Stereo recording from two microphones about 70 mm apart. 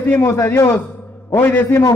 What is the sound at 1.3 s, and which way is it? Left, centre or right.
Speech, left.